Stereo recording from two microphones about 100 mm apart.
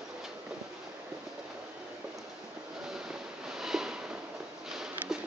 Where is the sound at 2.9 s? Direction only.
5° right (ahead or behind).